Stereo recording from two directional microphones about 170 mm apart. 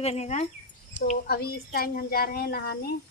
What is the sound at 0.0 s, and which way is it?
Speech, 40° left (ahead or behind).